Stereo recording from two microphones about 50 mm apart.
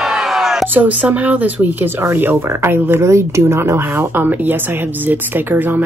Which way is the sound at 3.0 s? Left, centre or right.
Right.